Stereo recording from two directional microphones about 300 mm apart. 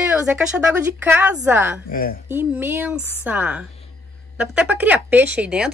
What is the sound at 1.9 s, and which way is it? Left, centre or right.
Speech, left.